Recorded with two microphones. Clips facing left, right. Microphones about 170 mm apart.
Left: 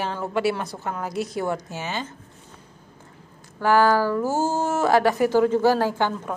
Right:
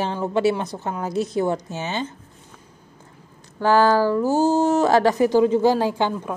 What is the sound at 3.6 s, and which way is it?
A woman's voice, 30° right (ahead or behind).